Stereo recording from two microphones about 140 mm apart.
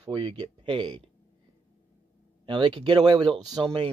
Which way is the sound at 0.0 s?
35° right (ahead or behind).